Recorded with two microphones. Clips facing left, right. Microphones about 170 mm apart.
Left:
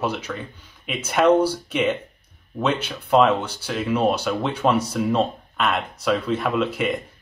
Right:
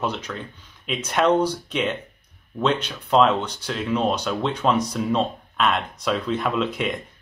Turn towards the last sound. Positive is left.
turn(degrees=5)  # may be behind; listen again after turning